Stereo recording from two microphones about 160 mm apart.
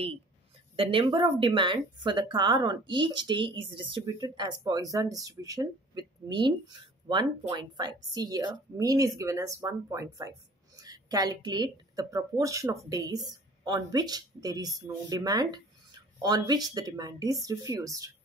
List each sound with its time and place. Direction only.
0.7 s a woman's voice: 35° right (ahead or behind)